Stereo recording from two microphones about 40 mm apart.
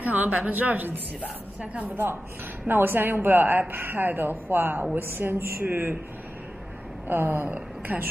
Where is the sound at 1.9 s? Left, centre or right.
Right.